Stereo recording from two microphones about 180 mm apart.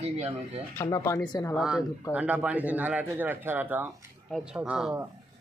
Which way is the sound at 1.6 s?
5° right (ahead or behind).